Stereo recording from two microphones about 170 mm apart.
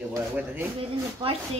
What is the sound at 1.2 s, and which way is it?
Speech, 30° right (ahead or behind).